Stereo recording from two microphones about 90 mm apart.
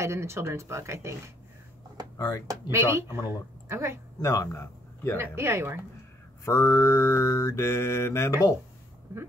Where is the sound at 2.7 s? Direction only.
30° right (ahead or behind).